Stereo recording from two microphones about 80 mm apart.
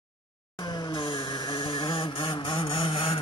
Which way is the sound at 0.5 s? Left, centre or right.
Left.